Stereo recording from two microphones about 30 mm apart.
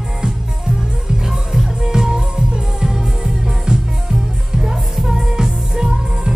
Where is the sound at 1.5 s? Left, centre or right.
Centre.